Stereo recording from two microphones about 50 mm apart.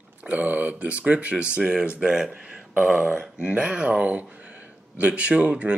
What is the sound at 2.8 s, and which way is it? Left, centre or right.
Speech, right.